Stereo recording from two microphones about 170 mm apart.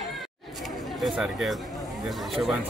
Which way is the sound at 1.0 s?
Centre (ahead or behind).